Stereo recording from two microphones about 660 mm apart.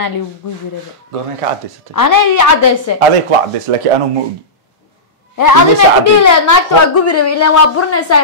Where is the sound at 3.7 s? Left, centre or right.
Right.